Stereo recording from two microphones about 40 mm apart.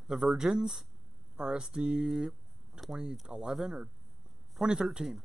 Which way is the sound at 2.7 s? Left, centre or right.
Centre.